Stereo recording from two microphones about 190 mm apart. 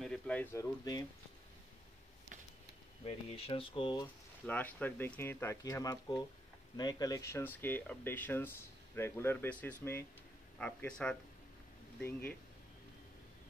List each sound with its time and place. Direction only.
0.0 s speech: 5° left (ahead or behind)
3.1 s speech: 30° left (ahead or behind)
4.5 s speech: 10° left (ahead or behind)